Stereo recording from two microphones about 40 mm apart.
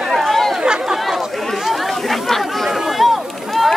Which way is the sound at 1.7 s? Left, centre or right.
Centre.